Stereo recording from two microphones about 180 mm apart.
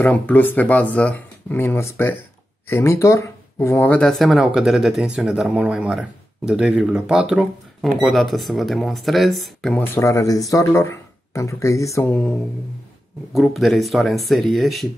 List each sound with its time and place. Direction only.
0.0 s speech: 10° left (ahead or behind)
9.9 s speech: 15° left (ahead or behind); by 14.9 s centre (ahead or behind)